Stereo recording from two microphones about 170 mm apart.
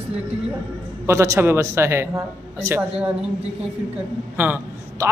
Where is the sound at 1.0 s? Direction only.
15° right (ahead or behind).